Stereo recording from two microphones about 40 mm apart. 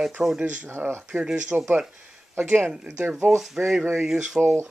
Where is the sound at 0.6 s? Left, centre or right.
Right.